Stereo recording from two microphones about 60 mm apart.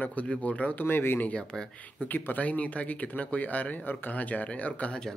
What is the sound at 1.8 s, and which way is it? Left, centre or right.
Speech, left.